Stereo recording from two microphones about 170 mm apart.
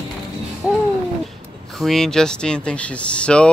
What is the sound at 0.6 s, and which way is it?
Babbling, 10° right (ahead or behind).